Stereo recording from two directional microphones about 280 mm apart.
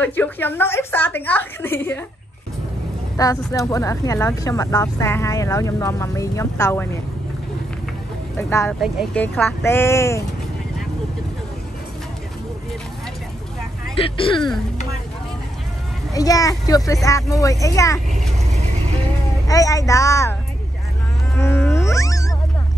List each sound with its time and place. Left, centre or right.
0.0 s speech: centre
3.2 s speech: centre
8.4 s speech: centre
14.0 s speech: centre
16.1 s speech: centre
19.4 s speech: centre
21.4 s cat: centre